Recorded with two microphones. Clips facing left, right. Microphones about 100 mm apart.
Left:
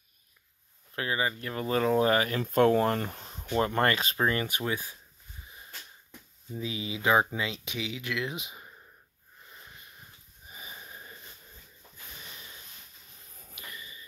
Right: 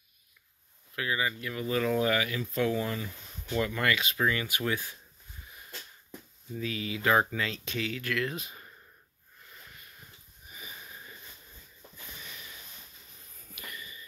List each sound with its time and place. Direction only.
0.9 s speech: 35° left (ahead or behind)
4.6 s speech: 20° left (ahead or behind)
6.5 s speech: 20° left (ahead or behind)
9.5 s wheeze: 25° left (ahead or behind)
13.6 s a sound: 25° left (ahead or behind)